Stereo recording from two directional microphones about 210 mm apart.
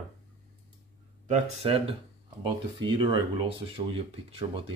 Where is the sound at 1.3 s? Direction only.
25° right (ahead or behind).